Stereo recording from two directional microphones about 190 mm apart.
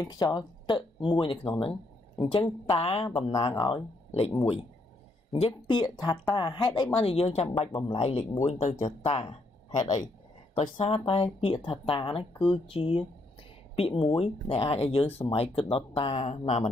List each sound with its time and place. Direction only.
0.0 s speech: 20° left (ahead or behind)
5.3 s speech: 25° left (ahead or behind)